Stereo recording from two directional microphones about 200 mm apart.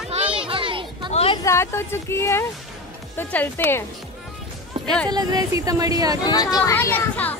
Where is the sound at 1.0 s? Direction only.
30° left (ahead or behind).